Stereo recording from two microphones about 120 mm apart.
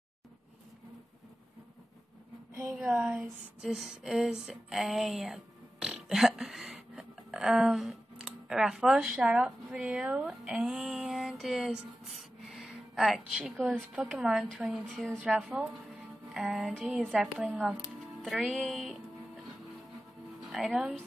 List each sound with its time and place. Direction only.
2.9 s speech: 5° right (ahead or behind)
12.4 s a sound: centre (ahead or behind)
14.0 s speech: centre (ahead or behind)
15.2 s speech: 10° right (ahead or behind)
20.3 s speech: centre (ahead or behind)